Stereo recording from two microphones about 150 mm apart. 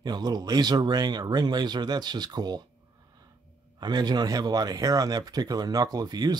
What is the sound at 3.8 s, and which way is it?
Speech, 30° right (ahead or behind).